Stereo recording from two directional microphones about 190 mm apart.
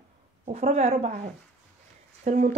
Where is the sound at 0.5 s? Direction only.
35° right (ahead or behind).